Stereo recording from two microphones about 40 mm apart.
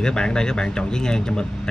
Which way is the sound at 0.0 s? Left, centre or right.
Centre.